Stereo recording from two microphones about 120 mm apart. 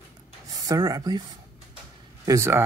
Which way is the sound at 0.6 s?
30° right (ahead or behind).